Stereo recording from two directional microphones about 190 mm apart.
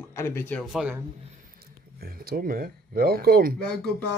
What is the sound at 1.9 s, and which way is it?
Speech, 55° right (ahead or behind).